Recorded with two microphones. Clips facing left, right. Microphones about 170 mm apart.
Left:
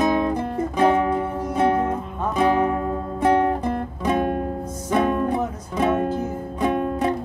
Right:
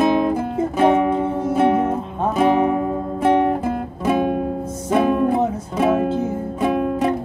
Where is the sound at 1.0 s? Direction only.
20° right (ahead or behind).